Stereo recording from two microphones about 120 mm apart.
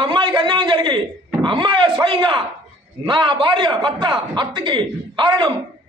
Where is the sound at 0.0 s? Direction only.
40° right (ahead or behind).